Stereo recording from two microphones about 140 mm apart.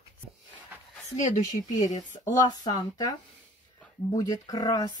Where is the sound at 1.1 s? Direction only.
60° left (ahead or behind).